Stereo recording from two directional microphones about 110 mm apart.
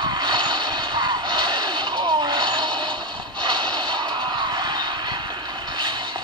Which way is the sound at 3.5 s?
45° right (ahead or behind).